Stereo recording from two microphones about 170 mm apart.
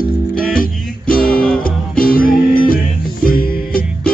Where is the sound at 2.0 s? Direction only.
55° left (ahead or behind).